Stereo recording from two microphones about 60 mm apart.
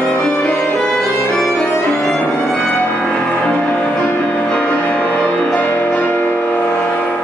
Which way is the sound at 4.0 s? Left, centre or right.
Left.